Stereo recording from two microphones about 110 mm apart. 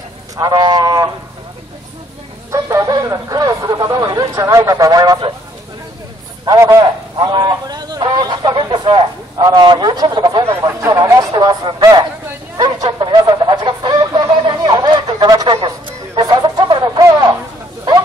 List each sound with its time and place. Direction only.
0.4 s a man's voice: 40° right (ahead or behind)
2.5 s a man's voice: 30° right (ahead or behind)
6.4 s a man's voice: 30° right (ahead or behind)
7.2 s a man's voice: 40° right (ahead or behind)
10.9 s a man's voice: 35° right (ahead or behind)
12.5 s a sound: 40° right (ahead or behind)